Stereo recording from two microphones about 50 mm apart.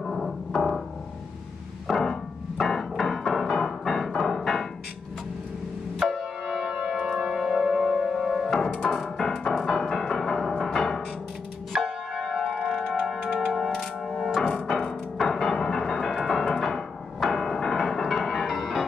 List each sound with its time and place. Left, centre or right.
0.0 s music: centre
1.9 s music: centre
6.0 s music: centre
6.5 s music: centre
6.9 s a sound: centre
9.2 s music: centre
11.7 s church bell: centre
12.6 s mechanisms: centre
13.5 s music: centre